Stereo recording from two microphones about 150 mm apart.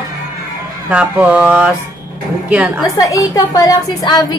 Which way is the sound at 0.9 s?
10° right (ahead or behind).